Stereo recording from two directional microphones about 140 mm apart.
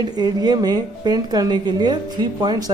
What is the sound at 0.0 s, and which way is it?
A woman's voice, 30° right (ahead or behind).